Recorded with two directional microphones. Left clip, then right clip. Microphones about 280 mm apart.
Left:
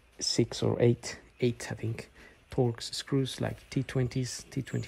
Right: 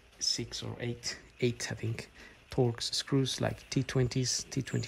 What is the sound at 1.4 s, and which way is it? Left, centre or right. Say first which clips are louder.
Speech: left 2 dB; centre.